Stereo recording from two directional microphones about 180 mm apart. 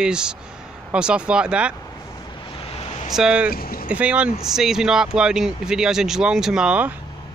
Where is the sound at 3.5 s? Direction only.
55° left (ahead or behind).